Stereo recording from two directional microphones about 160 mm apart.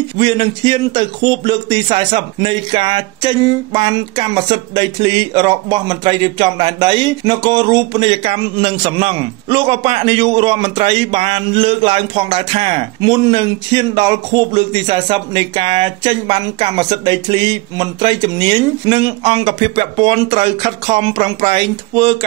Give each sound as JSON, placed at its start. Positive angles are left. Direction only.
{"t": 0.2, "sound": "a man's voice", "side_deg": -30}